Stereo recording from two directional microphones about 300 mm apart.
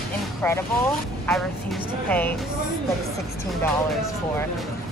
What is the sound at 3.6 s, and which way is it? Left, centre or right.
Speech, centre.